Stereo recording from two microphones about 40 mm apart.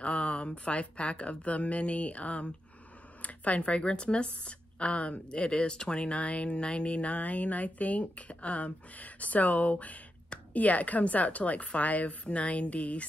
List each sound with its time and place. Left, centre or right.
0.0 s speech: left